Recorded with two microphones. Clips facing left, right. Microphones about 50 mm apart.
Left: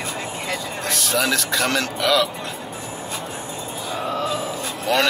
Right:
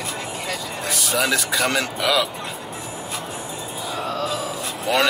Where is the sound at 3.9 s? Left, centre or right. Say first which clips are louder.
Left 1 dB; centre.